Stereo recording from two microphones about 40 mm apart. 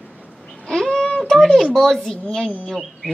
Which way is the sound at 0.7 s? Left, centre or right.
Centre.